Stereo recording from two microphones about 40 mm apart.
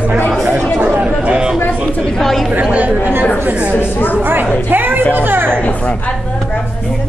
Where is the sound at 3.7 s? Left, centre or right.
Left.